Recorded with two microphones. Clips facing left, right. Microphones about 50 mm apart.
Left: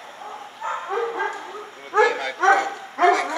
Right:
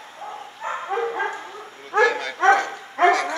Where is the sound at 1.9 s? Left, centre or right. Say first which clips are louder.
Even; centre.